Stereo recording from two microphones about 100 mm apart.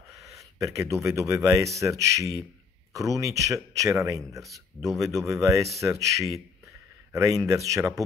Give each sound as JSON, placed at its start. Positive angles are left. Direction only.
{"t": 0.6, "sound": "speech", "side_deg": -30}
{"t": 4.4, "sound": "speech", "side_deg": 0}
{"t": 5.3, "sound": "speech", "side_deg": -30}